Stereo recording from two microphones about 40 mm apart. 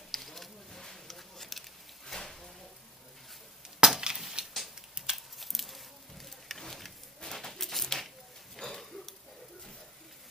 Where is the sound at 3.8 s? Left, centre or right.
Centre.